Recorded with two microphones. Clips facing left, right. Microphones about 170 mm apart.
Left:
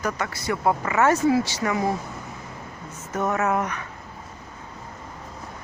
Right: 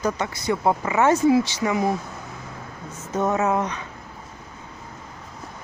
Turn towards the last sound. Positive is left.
turn(degrees=-20)  # may be behind; listen again after turning